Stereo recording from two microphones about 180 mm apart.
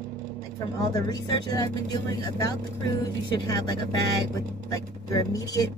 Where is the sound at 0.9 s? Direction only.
20° left (ahead or behind).